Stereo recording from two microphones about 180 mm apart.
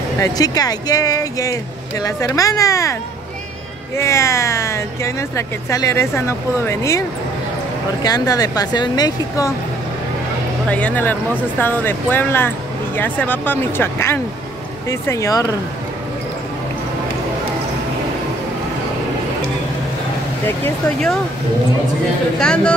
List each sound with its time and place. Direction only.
0.2 s speech: 20° left (ahead or behind)
8.0 s speech: 20° left (ahead or behind)
10.7 s speech: 10° left (ahead or behind)
20.4 s speech: 5° left (ahead or behind)
22.4 s speech: 5° left (ahead or behind)